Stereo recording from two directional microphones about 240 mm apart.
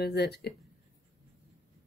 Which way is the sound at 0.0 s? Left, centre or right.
Left.